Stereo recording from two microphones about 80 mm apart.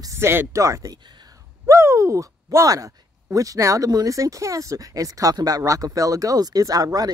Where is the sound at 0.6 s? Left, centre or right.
Right.